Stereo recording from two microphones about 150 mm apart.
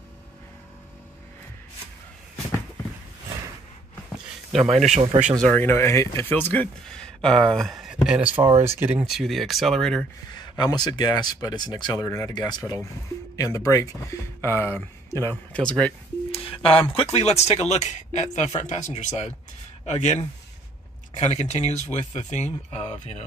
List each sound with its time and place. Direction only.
4.9 s speech: 40° right (ahead or behind)
5.4 s speech: 10° left (ahead or behind)
8.3 s speech: 35° right (ahead or behind)
8.5 s speech: 15° right (ahead or behind)
9.0 s speech: centre (ahead or behind)
10.6 s speech: 30° left (ahead or behind); by 15.9 s 10° left (ahead or behind)
16.3 s a sound: 40° left (ahead or behind)
16.9 s speech: 45° left (ahead or behind)